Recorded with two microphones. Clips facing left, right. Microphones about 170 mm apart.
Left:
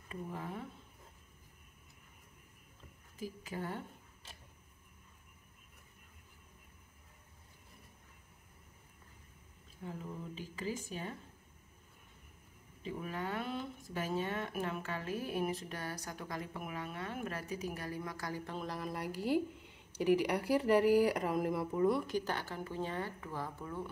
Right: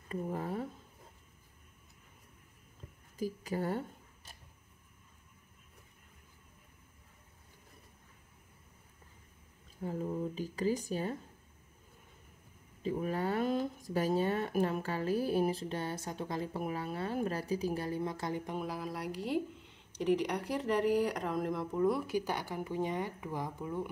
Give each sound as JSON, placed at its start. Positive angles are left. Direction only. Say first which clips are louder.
{"t": 0.1, "sound": "a sound", "louder": "right 6 dB", "side_deg": -40}
{"t": 3.2, "sound": "speech", "louder": "right 6 dB", "side_deg": -40}
{"t": 9.8, "sound": "speech", "louder": "right 9 dB", "side_deg": -40}
{"t": 12.8, "sound": "speech", "louder": "right 7 dB", "side_deg": -40}